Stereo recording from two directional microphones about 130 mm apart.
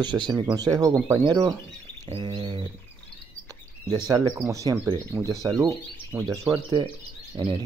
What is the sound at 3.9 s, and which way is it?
Speech, 30° right (ahead or behind).